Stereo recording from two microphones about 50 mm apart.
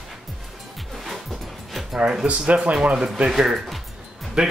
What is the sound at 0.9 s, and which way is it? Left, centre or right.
Dog, centre.